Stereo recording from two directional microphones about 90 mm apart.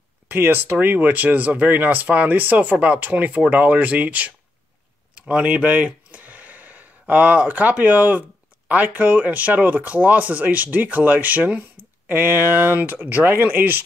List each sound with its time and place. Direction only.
0.3 s speech: 25° right (ahead or behind)
5.3 s speech: 15° right (ahead or behind)